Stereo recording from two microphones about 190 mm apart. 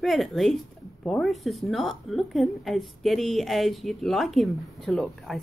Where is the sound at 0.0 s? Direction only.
Centre (ahead or behind).